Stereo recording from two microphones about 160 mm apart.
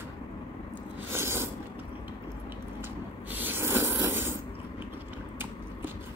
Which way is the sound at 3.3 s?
10° right (ahead or behind).